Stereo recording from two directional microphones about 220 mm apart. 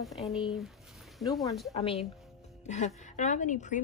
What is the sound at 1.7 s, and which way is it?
A woman's voice, 30° left (ahead or behind).